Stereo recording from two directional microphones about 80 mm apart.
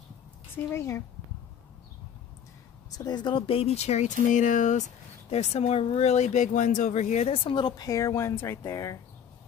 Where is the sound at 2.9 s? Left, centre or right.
Left.